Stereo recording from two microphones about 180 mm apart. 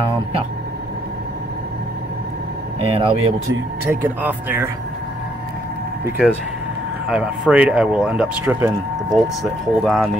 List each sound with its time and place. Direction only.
3.0 s speech: 25° right (ahead or behind)
3.8 s speech: 10° right (ahead or behind)
6.0 s speech: 10° right (ahead or behind)